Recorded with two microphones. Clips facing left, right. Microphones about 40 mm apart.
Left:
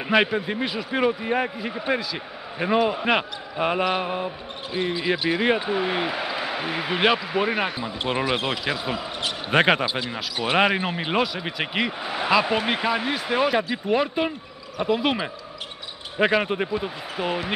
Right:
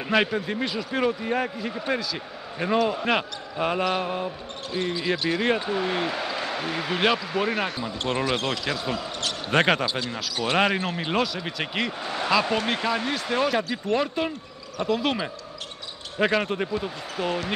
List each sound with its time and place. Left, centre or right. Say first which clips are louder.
0.1 s speech: left 2 dB; centre